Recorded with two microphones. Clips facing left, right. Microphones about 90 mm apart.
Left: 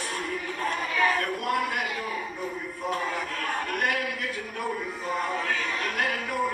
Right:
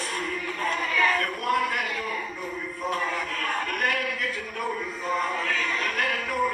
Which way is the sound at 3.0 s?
30° left (ahead or behind).